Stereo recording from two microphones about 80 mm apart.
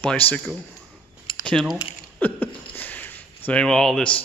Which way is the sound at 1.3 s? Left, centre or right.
Left.